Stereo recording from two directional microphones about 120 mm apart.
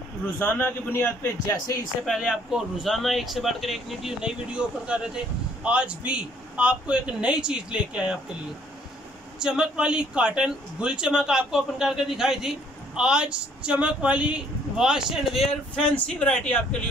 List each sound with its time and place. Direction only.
0.4 s a man's voice: 20° left (ahead or behind)
2.0 s speech: 5° right (ahead or behind)
9.4 s speech: 5° right (ahead or behind); by 16.6 s 10° left (ahead or behind)